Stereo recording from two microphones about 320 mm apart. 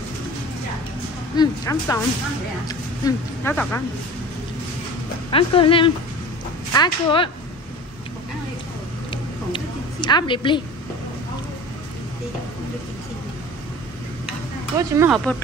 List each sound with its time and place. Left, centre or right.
1.3 s speech: centre
5.3 s speech: centre
9.1 s a sound: centre
14.8 s speech: centre